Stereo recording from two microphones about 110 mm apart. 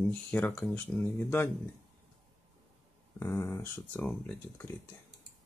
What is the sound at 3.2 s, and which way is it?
Speech, 20° left (ahead or behind).